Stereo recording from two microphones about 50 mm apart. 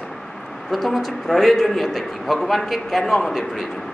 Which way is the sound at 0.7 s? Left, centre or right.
Centre.